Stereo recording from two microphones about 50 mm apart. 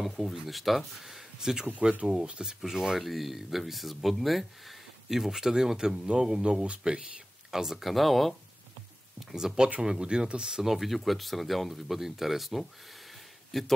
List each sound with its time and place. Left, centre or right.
0.0 s speech: centre
1.7 s speech: right
3.0 s speech: centre
7.5 s speech: centre
9.3 s speech: centre